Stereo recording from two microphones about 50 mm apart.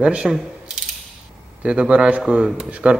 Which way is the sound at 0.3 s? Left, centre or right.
Centre.